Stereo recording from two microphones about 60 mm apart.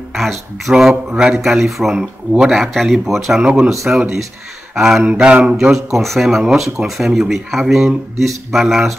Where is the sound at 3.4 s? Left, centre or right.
Centre.